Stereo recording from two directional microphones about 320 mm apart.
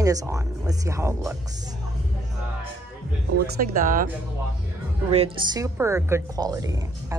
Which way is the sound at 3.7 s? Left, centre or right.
Right.